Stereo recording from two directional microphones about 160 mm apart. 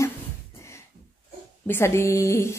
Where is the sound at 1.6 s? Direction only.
15° left (ahead or behind).